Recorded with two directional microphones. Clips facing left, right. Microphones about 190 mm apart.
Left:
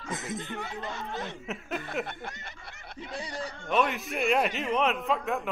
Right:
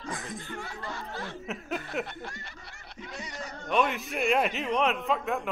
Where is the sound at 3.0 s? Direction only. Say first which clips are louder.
Left 4 dB; 30° left (ahead or behind).